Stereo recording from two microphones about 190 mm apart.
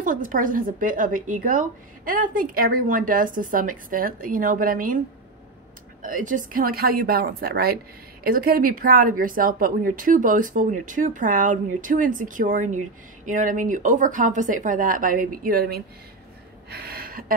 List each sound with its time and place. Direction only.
0.0 s a woman's voice: 45° right (ahead or behind)
6.0 s a woman's voice: 45° right (ahead or behind)
16.7 s gasp: 55° right (ahead or behind)